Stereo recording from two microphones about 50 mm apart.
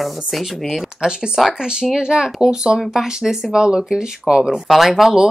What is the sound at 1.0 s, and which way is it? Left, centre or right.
Speech, centre.